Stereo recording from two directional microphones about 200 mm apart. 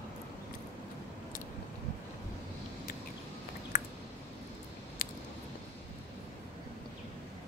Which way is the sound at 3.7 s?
45° left (ahead or behind).